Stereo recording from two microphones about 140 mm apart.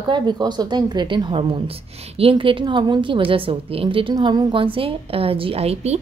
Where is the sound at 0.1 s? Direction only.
30° right (ahead or behind).